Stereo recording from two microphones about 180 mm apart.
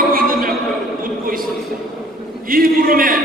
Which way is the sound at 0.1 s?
55° right (ahead or behind).